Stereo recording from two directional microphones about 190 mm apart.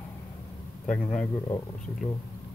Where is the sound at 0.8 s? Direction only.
5° left (ahead or behind).